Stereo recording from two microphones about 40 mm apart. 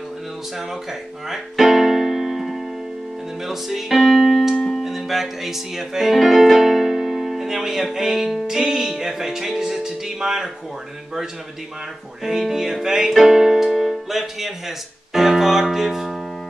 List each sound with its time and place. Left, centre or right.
1.3 s keyboard: centre
3.4 s speech: centre
4.6 s music: centre
4.8 s speech: centre
12.2 s speech: centre
13.3 s keyboard: centre
15.1 s music: centre